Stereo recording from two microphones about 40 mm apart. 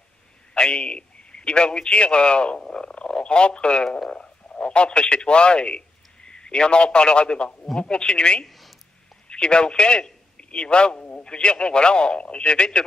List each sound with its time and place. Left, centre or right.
0.6 s a man's voice: left
8.5 s a sound: centre
9.3 s a man's voice: left